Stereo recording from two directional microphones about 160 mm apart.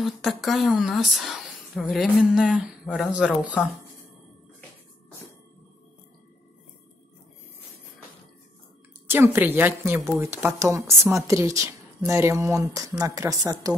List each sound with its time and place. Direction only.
0.0 s a woman's voice: centre (ahead or behind)
9.0 s a woman's voice: 15° right (ahead or behind)